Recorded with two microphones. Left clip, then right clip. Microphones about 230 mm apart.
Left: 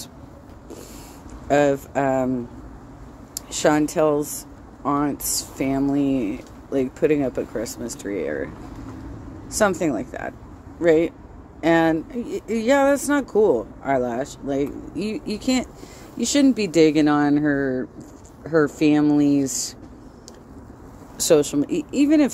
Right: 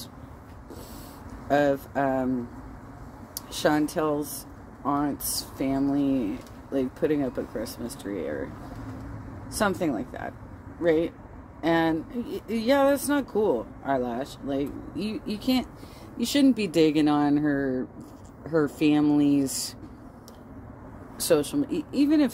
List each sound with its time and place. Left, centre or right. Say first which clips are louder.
1.5 s speech: left 5 dB; centre
3.3 s speech: left 5 dB; centre
9.5 s speech: left 6 dB; centre
21.2 s speech: left 6 dB; centre